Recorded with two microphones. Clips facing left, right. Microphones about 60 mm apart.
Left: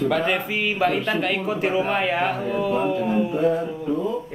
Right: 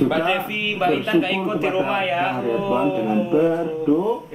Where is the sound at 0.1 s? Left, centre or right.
Centre.